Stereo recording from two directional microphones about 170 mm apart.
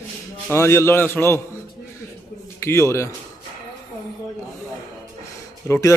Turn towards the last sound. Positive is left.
turn(degrees=20)  # may be behind; listen again after turning